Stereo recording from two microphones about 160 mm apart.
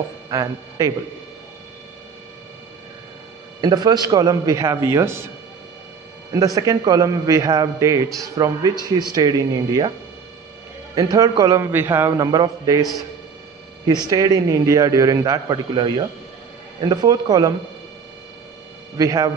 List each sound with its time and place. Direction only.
0.3 s speech: 20° right (ahead or behind)
3.6 s a man's voice: 25° right (ahead or behind)
6.3 s a man's voice: 20° right (ahead or behind)
11.0 s a man's voice: 20° right (ahead or behind)
13.8 s a man's voice: 25° right (ahead or behind)
18.9 s a man's voice: 20° right (ahead or behind)